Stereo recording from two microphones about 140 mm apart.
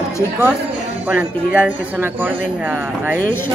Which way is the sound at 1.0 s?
10° right (ahead or behind).